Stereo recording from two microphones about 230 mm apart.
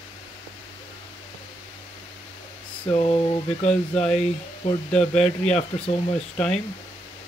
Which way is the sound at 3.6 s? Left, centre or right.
Left.